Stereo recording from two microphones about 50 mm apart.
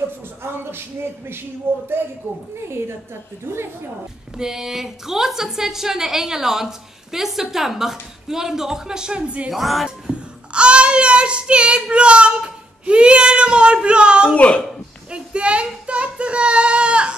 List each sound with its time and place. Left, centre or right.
0.4 s speech: right
3.4 s speech: right
4.4 s a woman's voice: centre
9.5 s speech: centre
9.8 s speech: centre
14.3 s speech: left
15.0 s child singing: right